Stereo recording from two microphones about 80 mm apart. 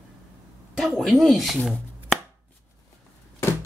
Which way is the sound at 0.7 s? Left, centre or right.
Centre.